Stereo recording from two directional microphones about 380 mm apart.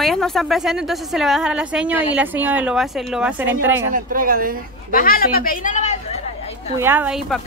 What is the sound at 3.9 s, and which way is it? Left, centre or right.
Speech, right.